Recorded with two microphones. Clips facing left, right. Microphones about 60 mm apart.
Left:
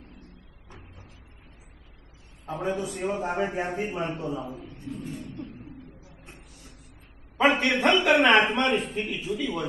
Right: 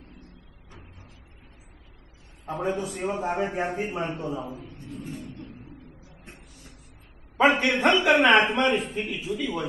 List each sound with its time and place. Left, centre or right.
2.7 s a man's voice: right
3.3 s a man's voice: centre
7.4 s a man's voice: centre